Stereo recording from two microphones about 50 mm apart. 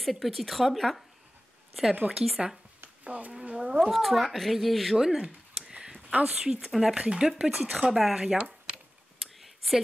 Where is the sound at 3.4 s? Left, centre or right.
Centre.